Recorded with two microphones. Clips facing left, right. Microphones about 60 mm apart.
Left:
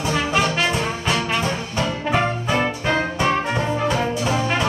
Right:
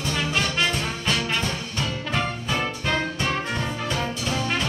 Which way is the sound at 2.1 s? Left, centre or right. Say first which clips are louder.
Left 6 dB; left.